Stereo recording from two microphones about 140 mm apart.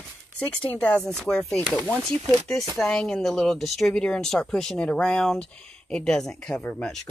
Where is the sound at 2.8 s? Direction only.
5° left (ahead or behind).